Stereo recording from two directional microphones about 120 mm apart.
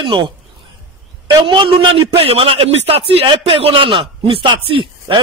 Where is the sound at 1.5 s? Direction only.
40° right (ahead or behind).